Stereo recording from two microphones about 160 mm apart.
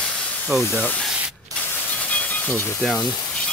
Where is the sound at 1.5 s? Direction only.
20° right (ahead or behind).